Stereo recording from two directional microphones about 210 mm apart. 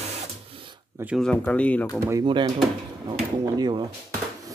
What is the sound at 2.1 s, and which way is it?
Speech, 20° right (ahead or behind).